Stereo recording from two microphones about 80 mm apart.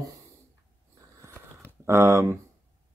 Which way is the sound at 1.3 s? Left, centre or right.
Left.